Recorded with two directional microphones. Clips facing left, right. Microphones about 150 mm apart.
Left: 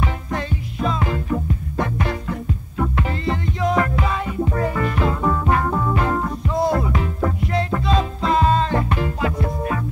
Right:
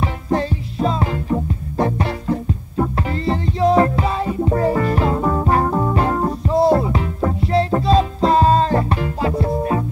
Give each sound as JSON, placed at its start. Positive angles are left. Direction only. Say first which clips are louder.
{"t": 0.0, "sound": "music", "louder": "right 5 dB", "side_deg": -35}